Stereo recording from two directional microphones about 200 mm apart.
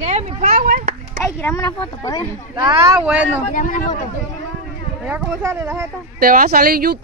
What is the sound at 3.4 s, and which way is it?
Speech, 40° left (ahead or behind).